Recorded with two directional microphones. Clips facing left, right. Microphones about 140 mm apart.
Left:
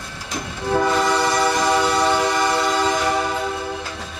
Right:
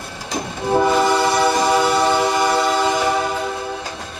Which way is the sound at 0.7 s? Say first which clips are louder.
Right 3 dB; 15° right (ahead or behind).